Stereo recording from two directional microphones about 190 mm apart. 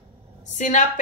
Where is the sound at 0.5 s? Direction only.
40° left (ahead or behind).